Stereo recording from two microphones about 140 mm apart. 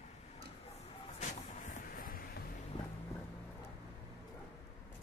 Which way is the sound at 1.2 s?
60° left (ahead or behind).